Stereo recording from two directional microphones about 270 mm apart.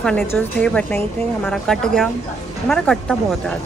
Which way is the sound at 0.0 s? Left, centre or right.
Centre.